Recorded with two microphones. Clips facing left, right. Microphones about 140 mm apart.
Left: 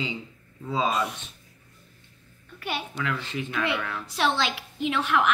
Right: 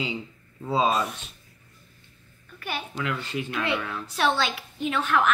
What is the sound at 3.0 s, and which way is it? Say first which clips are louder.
A woman's voice: right 1 dB; 15° right (ahead or behind).